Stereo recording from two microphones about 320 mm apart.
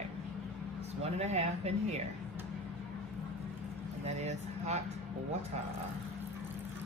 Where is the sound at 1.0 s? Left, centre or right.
Right.